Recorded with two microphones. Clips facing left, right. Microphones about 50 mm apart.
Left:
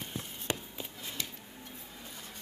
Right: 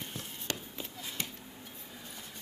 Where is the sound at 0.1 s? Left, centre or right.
Centre.